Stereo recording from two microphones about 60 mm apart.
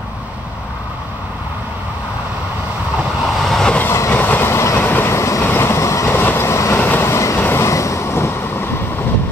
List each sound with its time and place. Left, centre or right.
3.2 s vehicle: centre
4.1 s train: left
4.5 s train: left
4.7 s train: left
5.0 s vehicle: left
5.5 s train: left
6.1 s train: left
6.7 s train: left
7.0 s train: left
7.3 s train: left
7.6 s vehicle: left